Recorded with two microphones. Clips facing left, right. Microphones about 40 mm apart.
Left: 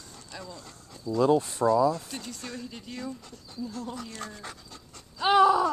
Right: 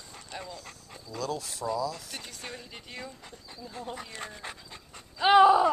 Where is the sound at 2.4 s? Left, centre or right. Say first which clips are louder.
Left 3 dB; right.